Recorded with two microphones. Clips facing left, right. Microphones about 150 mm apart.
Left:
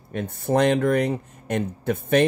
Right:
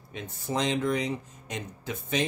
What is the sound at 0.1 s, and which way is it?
Speech, 55° left (ahead or behind).